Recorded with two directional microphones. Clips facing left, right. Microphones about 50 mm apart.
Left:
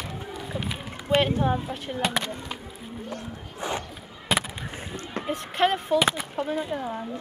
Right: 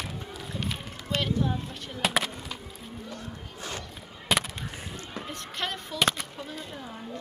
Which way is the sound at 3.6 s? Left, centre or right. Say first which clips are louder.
Left 8 dB; left.